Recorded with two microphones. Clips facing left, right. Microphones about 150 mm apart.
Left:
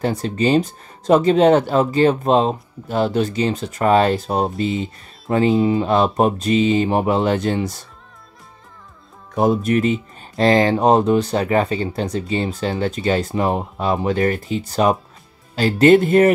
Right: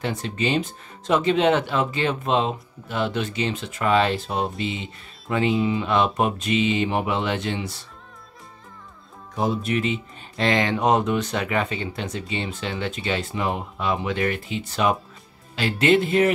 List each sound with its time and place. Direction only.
0.0 s speech: 40° left (ahead or behind)
9.3 s speech: 50° left (ahead or behind)